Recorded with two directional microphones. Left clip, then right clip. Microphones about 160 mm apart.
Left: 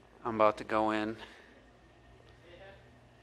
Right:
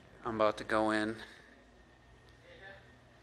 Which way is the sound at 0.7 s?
5° left (ahead or behind).